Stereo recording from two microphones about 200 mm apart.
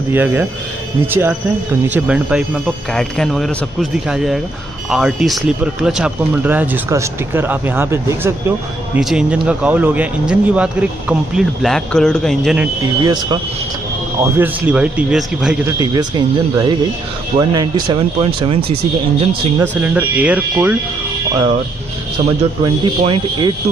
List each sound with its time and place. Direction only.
0.1 s speech: 10° right (ahead or behind)
13.0 s speech: 20° right (ahead or behind)
14.2 s speech: 10° right (ahead or behind)
15.8 s speech: 20° right (ahead or behind)
19.8 s speech: 10° right (ahead or behind)
21.3 s speech: 20° right (ahead or behind)